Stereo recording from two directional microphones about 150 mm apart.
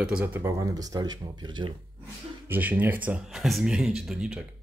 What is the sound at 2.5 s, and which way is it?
Speech, 10° right (ahead or behind).